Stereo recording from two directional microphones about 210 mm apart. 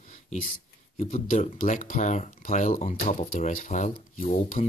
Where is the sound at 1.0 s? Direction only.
35° left (ahead or behind).